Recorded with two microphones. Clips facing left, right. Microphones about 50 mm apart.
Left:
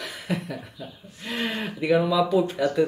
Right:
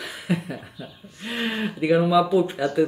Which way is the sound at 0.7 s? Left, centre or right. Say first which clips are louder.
Even; centre.